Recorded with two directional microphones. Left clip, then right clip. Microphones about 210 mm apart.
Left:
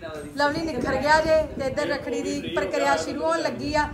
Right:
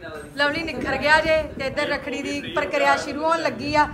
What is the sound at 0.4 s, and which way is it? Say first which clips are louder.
A woman's voice: right 1 dB; 15° left (ahead or behind).